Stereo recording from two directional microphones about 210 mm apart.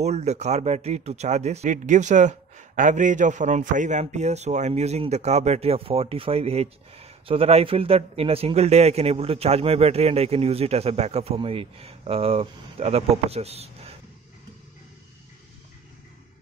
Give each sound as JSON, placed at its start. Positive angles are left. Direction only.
{"t": 0.0, "sound": "speech", "side_deg": -30}